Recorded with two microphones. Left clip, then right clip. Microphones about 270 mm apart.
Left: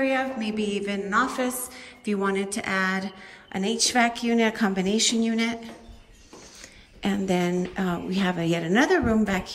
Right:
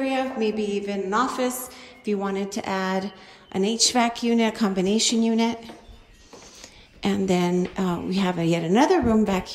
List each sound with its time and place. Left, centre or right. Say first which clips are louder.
0.0 s a woman's voice: right 1 dB; centre
1.1 s speech: right 1 dB; centre
1.8 s speech: even; centre
7.0 s speech: right 2 dB; centre